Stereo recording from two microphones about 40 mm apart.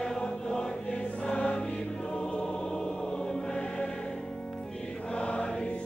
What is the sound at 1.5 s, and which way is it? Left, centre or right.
Music, left.